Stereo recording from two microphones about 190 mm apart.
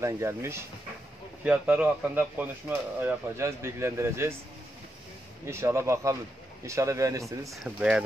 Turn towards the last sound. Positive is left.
turn(degrees=-5)  # may be behind; listen again after turning